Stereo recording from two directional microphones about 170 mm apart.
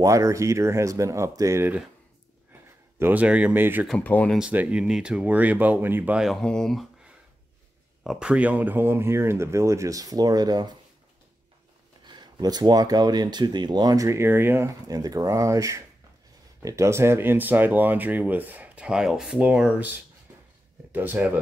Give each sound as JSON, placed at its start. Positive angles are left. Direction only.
{"t": 0.0, "sound": "speech", "side_deg": -20}
{"t": 3.0, "sound": "speech", "side_deg": -10}
{"t": 3.8, "sound": "speech", "side_deg": 5}
{"t": 4.4, "sound": "speech", "side_deg": -10}
{"t": 12.1, "sound": "speech", "side_deg": -25}